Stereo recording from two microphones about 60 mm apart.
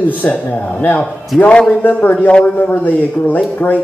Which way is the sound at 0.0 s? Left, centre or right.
Left.